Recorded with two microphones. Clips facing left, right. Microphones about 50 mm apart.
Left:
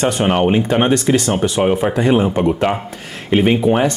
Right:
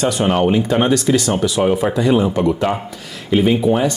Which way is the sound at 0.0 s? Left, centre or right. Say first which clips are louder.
Left 1 dB; left.